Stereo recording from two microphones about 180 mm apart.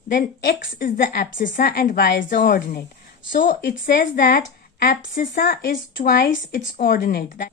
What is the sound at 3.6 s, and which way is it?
A woman's voice, 65° left (ahead or behind).